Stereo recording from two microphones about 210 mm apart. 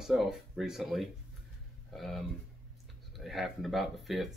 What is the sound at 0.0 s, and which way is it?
Speech, centre (ahead or behind).